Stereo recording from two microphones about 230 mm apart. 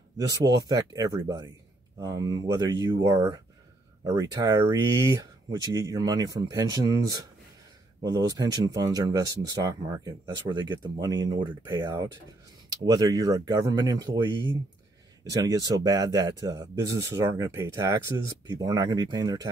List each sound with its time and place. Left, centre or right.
0.3 s speech: centre
15.4 s speech: centre